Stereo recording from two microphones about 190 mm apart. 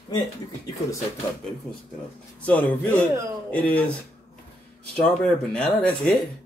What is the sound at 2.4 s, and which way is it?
Speech, 10° left (ahead or behind).